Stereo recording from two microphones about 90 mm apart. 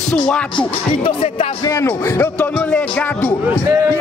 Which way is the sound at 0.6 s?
65° left (ahead or behind).